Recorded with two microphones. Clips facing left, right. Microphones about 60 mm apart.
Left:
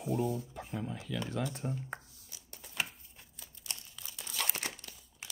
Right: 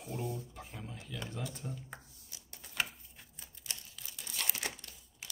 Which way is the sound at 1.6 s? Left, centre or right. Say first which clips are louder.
Left 6 dB; left.